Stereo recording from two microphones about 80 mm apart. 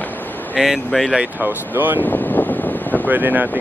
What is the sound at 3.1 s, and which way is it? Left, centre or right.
Speech, right.